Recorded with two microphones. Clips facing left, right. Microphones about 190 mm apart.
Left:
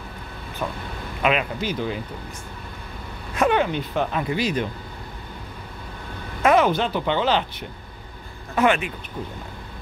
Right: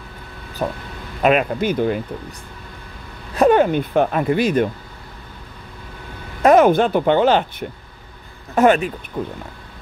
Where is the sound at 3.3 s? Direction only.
40° right (ahead or behind).